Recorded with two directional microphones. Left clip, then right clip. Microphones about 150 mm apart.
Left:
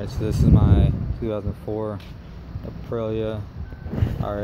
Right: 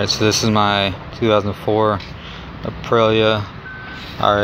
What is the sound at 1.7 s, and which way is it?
Speech, 40° right (ahead or behind).